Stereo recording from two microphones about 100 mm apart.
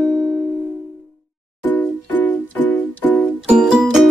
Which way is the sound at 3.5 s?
5° right (ahead or behind).